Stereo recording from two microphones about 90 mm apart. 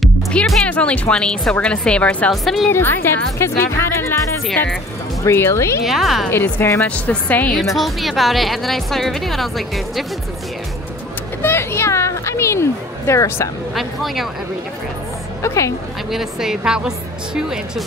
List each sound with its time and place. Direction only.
0.3 s a woman's voice: 10° left (ahead or behind)
2.4 s speech: centre (ahead or behind)
2.7 s speech: 25° left (ahead or behind)
5.2 s speech: 30° left (ahead or behind)
5.9 s speech: centre (ahead or behind)
6.3 s speech: 30° left (ahead or behind)
7.1 s a woman's voice: 20° left (ahead or behind)
7.7 s speech: centre (ahead or behind)
11.4 s speech: 30° left (ahead or behind)
13.7 s speech: centre (ahead or behind)
15.4 s speech: 35° left (ahead or behind)
16.1 s a woman's voice: 5° right (ahead or behind)